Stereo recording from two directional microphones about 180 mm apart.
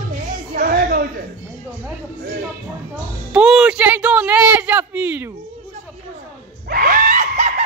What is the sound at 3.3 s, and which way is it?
Speech, 5° right (ahead or behind).